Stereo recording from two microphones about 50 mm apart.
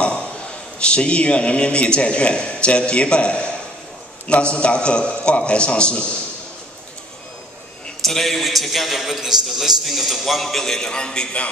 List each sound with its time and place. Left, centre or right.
0.7 s a man's voice: left
8.0 s a man's voice: centre; by 11.5 s left